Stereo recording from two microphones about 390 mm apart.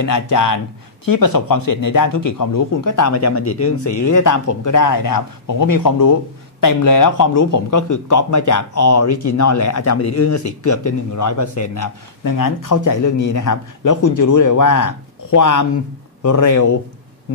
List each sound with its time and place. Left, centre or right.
0.0 s a man's voice: left